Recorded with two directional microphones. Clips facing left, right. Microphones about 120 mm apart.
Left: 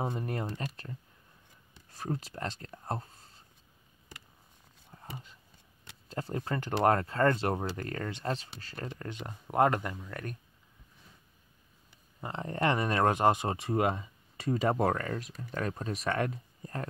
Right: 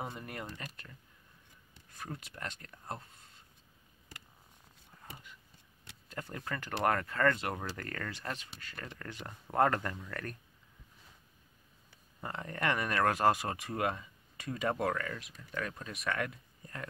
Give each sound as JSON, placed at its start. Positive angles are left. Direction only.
{"t": 0.0, "sound": "speech", "side_deg": 30}
{"t": 4.9, "sound": "a sound", "side_deg": 30}
{"t": 6.0, "sound": "speech", "side_deg": 30}
{"t": 12.2, "sound": "speech", "side_deg": 25}